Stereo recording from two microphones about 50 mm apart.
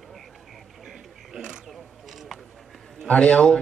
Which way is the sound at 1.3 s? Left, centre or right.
Centre.